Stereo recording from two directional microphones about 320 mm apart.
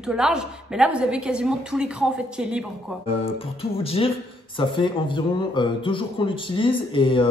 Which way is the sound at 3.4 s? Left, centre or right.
Centre.